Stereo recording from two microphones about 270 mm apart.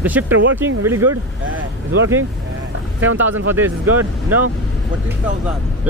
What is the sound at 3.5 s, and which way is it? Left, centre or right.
Speech, centre.